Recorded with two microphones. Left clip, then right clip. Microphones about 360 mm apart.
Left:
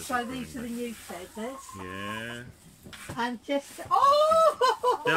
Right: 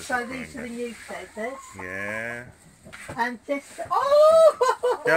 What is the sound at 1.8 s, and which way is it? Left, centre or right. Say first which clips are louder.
Speech: right 6 dB; right.